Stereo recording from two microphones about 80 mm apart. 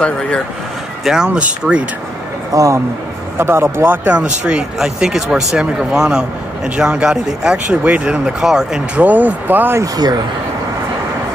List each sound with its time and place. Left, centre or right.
0.0 s speech: centre
1.0 s speech: centre
2.5 s a man's voice: right
3.3 s speech: right; by 9.0 s centre
9.0 s speech: right